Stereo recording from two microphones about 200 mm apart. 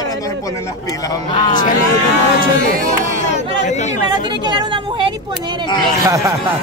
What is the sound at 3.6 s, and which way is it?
Speech, 35° left (ahead or behind).